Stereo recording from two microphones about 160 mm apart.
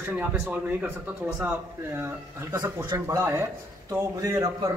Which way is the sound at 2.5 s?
20° right (ahead or behind).